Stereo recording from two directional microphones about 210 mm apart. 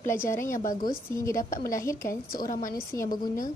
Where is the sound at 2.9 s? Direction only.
15° left (ahead or behind).